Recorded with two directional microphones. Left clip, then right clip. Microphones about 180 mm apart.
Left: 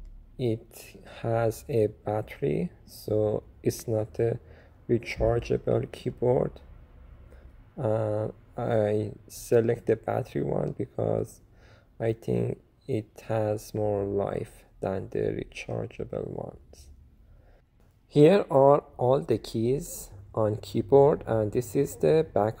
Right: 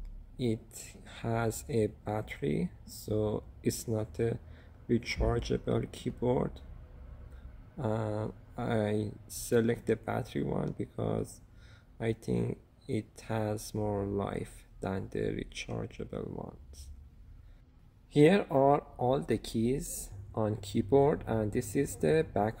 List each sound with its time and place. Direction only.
0.8 s speech: 5° left (ahead or behind)
7.7 s speech: 10° left (ahead or behind)
18.1 s speech: 10° left (ahead or behind)